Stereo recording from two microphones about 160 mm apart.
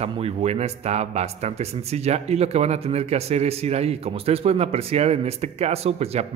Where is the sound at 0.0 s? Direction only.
40° right (ahead or behind).